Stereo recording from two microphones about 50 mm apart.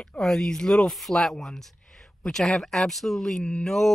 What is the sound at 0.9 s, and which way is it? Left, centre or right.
Speech, centre.